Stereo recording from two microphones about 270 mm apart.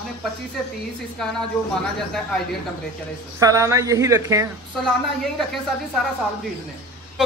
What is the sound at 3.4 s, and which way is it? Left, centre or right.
Speech, centre.